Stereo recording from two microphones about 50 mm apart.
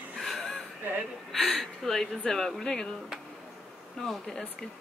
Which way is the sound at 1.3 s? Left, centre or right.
Centre.